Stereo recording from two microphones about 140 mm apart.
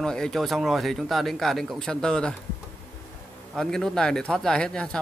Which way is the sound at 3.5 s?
5° left (ahead or behind).